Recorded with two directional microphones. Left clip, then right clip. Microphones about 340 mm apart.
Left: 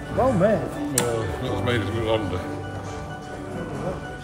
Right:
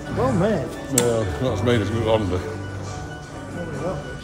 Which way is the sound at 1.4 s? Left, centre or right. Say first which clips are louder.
Right 4 dB; centre.